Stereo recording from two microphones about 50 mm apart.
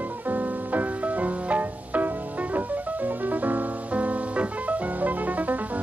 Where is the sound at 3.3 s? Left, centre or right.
Right.